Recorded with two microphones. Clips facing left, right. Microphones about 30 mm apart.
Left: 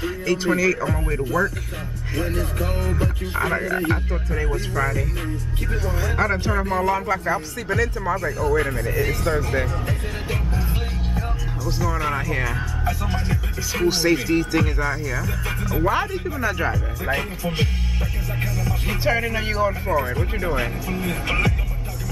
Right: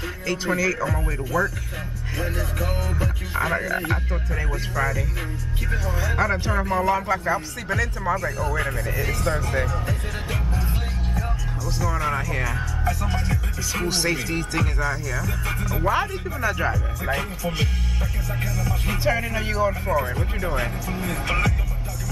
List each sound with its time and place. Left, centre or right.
0.0 s speech: centre
1.0 s speech: left
2.1 s speech: centre
17.4 s speech: left